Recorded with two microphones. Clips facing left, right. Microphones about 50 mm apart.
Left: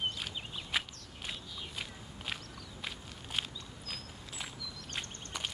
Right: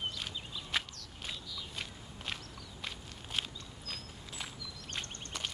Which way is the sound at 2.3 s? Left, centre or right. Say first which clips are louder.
Left 1 dB; centre.